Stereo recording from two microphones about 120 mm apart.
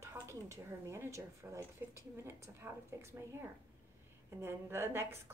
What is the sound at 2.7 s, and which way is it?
Speech, 20° right (ahead or behind).